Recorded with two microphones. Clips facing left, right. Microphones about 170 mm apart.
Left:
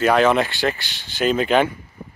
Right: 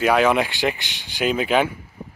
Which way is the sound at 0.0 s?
10° right (ahead or behind).